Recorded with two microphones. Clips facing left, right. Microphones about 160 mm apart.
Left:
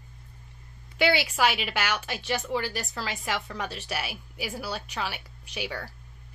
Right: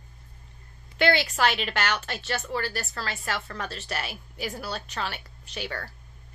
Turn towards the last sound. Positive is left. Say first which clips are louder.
# even
turn(degrees=10)  # may be behind; listen again after turning